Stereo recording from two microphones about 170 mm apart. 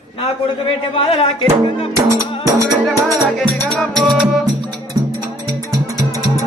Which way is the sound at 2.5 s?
20° right (ahead or behind).